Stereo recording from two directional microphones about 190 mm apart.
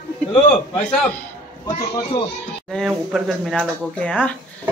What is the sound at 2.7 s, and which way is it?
Speech, centre (ahead or behind).